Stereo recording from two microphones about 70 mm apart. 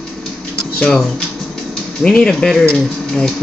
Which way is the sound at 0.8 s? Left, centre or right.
Centre.